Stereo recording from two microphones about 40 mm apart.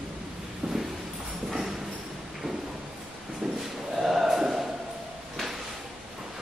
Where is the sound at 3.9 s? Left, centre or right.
Centre.